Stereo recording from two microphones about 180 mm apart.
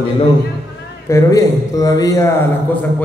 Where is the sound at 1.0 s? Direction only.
15° left (ahead or behind).